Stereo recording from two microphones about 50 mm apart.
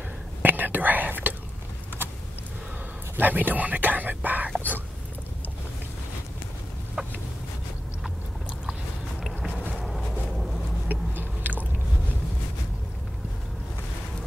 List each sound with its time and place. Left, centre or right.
0.4 s whispering: right
3.2 s whispering: right
4.6 s a sound: left
7.0 s chicken: centre
9.8 s a sound: centre
10.9 s vehicle: right